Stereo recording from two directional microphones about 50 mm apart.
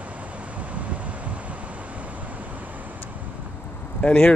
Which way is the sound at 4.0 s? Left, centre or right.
Left.